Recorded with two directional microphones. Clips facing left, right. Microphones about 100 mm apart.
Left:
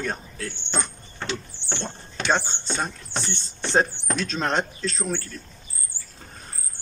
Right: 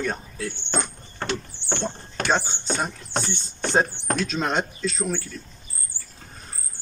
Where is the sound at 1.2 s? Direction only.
50° right (ahead or behind).